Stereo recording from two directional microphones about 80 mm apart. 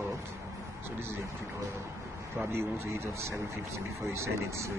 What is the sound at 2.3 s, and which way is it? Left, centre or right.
Speech, right.